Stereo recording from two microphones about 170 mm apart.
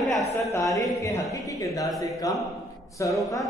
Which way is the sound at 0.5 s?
20° left (ahead or behind).